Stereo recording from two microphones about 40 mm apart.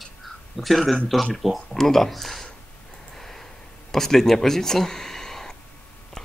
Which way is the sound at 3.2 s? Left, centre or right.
Centre.